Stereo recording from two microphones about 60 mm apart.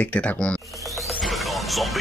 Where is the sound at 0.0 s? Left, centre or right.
Left.